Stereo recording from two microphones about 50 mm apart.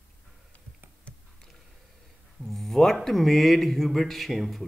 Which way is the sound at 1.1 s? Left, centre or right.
Left.